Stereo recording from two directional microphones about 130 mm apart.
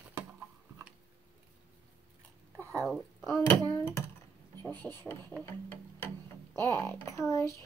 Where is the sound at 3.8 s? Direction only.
20° left (ahead or behind).